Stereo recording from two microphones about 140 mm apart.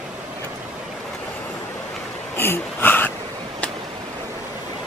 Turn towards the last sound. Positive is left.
turn(degrees=15)  # may be behind; listen again after turning